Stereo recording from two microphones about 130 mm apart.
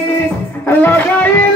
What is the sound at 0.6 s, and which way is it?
Music, 15° left (ahead or behind).